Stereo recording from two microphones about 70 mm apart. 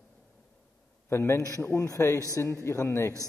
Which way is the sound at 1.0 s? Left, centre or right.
Left.